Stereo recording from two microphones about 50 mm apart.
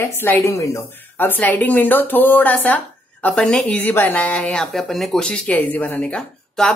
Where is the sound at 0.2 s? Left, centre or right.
Left.